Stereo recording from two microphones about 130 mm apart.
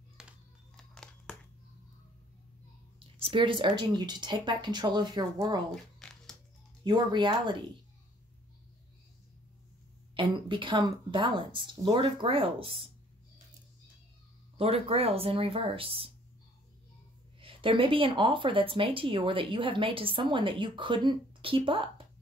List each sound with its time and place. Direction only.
0.2 s music: 5° right (ahead or behind)
0.7 s a sound: 5° left (ahead or behind)
3.0 s speech: 45° right (ahead or behind)
6.8 s speech: 35° right (ahead or behind)
10.1 s speech: 40° right (ahead or behind)
14.6 s speech: 50° right (ahead or behind)
17.4 s speech: 45° right (ahead or behind)